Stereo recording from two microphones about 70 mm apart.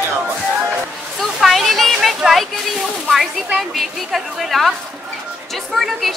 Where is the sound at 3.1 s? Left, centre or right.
Centre.